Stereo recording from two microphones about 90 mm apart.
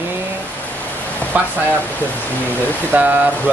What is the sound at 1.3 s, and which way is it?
Speech, 15° right (ahead or behind).